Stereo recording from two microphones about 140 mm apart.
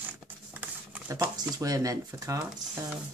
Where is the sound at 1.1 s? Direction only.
25° right (ahead or behind).